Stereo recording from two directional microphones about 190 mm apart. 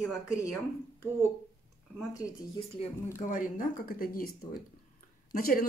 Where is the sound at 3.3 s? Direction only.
45° left (ahead or behind).